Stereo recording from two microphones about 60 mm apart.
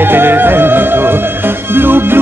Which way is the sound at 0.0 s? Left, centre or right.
Right.